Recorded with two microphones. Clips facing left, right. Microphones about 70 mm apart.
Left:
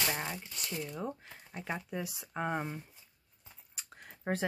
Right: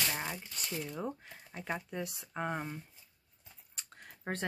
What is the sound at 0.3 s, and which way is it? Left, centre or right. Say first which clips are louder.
Speech: even; centre.